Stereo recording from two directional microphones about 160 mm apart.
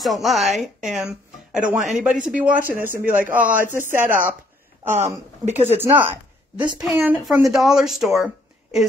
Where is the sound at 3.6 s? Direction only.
55° right (ahead or behind).